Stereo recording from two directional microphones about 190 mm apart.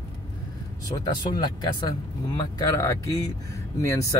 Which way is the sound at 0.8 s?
20° left (ahead or behind).